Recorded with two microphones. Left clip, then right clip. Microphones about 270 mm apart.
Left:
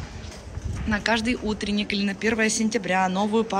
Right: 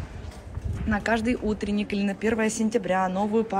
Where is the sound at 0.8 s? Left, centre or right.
Centre.